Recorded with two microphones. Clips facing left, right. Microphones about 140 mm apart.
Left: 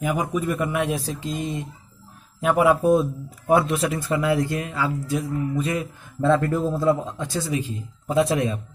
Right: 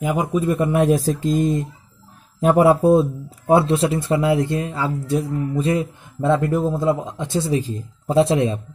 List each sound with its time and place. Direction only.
0.0 s speech: 25° right (ahead or behind)